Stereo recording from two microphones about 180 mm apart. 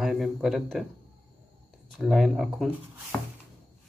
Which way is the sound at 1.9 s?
Centre (ahead or behind).